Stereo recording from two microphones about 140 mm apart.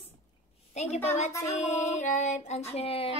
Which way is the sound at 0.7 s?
50° left (ahead or behind).